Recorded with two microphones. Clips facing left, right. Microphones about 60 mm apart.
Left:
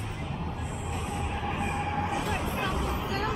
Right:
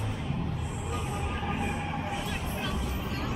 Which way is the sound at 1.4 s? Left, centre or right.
Centre.